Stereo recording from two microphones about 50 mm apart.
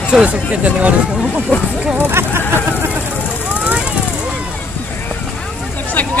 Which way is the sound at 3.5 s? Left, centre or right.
Right.